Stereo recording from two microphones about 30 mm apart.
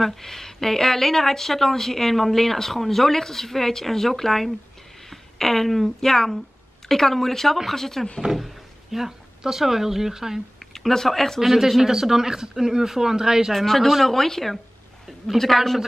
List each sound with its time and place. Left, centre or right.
0.0 s speech: centre
8.9 s speech: centre
10.7 s speech: centre
11.8 s speech: centre
13.5 s a man's voice: centre